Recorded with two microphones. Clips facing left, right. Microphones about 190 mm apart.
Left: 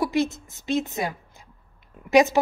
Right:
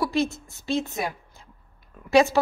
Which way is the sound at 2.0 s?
20° left (ahead or behind).